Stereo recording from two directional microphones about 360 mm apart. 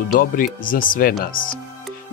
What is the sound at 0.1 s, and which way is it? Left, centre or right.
Speech, left.